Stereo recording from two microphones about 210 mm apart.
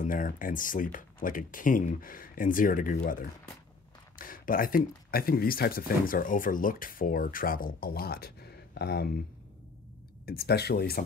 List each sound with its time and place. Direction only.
0.0 s speech: 40° left (ahead or behind)
10.2 s speech: 45° left (ahead or behind)